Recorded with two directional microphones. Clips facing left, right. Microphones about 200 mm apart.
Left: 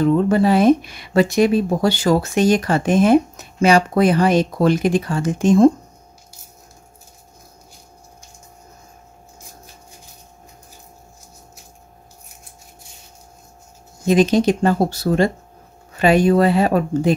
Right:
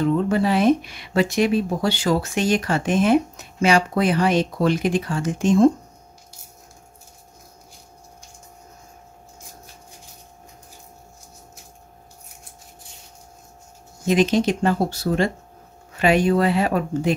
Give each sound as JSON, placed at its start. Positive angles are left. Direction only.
{"t": 0.0, "sound": "speech", "side_deg": 40}
{"t": 14.0, "sound": "speech", "side_deg": 35}